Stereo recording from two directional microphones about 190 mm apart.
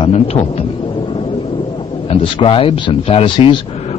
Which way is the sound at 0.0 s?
35° left (ahead or behind).